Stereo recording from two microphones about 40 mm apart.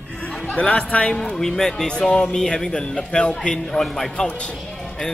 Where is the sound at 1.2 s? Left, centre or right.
Centre.